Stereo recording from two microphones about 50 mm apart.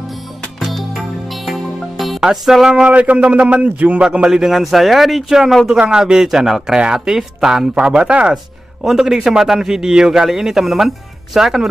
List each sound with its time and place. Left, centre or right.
0.6 s music: centre
2.1 s music: centre
2.7 s a man's voice: right
8.8 s a man's voice: centre